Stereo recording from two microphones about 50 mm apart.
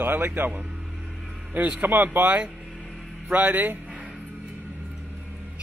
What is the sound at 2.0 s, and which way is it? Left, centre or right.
Speech, right.